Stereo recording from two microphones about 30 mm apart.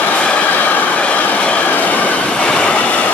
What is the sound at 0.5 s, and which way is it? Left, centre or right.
Train, left.